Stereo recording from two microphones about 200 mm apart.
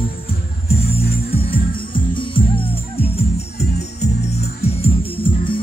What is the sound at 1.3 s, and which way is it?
Music, 25° left (ahead or behind).